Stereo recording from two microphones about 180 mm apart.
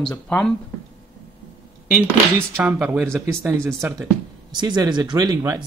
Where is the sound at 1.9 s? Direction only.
10° right (ahead or behind).